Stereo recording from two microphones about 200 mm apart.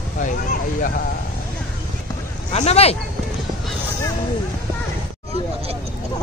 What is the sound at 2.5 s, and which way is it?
Speech, 30° left (ahead or behind).